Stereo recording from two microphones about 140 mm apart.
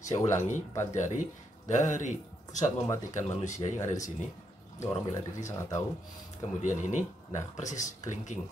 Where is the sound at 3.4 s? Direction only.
60° left (ahead or behind).